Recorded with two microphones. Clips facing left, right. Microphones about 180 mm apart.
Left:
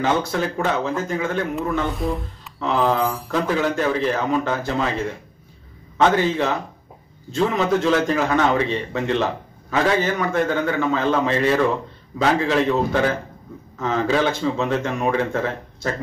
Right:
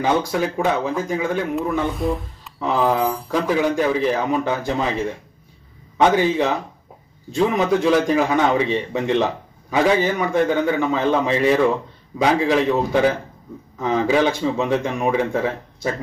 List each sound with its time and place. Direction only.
0.0 s a man's voice: 10° right (ahead or behind)
2.0 s speech: centre (ahead or behind)
2.6 s a man's voice: 10° right (ahead or behind)
5.9 s a man's voice: 15° right (ahead or behind)